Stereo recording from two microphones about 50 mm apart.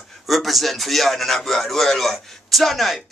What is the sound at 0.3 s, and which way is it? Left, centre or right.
A man's voice, centre.